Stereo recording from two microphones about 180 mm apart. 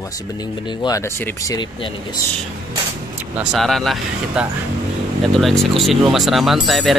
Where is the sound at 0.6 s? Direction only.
25° left (ahead or behind).